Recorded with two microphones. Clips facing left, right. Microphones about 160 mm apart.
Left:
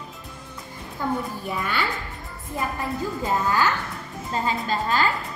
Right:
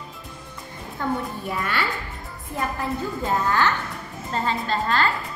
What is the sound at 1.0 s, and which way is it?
Speech, 10° left (ahead or behind).